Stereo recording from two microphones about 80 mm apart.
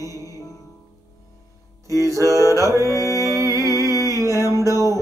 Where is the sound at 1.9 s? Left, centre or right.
Right.